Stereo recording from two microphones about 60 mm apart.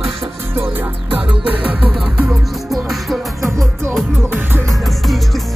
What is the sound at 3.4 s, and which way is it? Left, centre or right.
Music, right.